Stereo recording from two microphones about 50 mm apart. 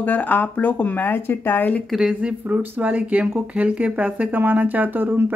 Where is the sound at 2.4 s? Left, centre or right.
Right.